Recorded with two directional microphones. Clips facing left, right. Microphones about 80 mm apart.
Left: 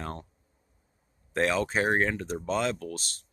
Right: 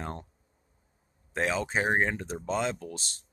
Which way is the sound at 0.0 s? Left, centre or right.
Right.